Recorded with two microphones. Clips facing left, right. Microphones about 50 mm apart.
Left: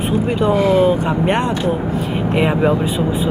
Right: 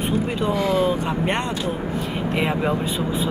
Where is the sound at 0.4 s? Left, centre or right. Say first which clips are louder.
Left 8 dB; left.